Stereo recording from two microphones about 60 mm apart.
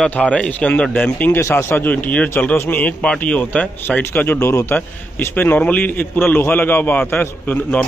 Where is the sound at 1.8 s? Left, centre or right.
Left.